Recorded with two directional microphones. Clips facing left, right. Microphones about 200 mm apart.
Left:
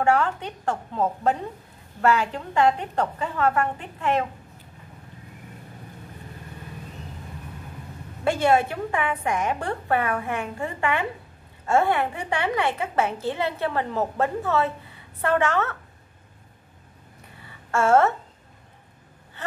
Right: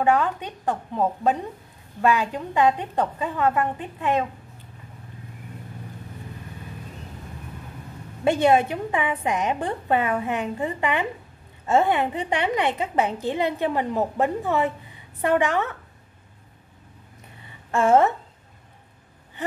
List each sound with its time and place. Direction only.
0.0 s a woman's voice: 15° right (ahead or behind)
8.2 s a woman's voice: 20° right (ahead or behind)
17.6 s a woman's voice: 15° right (ahead or behind)